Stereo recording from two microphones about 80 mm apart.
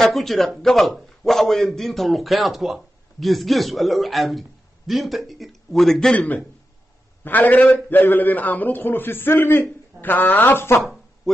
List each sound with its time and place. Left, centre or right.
0.0 s a man's voice: centre
6.1 s a man's voice: centre